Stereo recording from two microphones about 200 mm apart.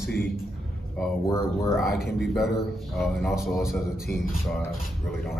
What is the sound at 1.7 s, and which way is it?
A man's voice, centre (ahead or behind).